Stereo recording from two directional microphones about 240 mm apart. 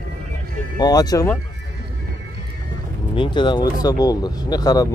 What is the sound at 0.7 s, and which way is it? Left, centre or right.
Speech, centre.